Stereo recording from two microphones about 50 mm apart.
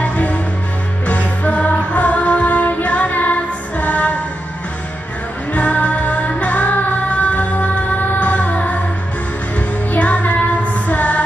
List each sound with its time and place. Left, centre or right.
0.0 s music: left
5.5 s music: left
9.9 s music: left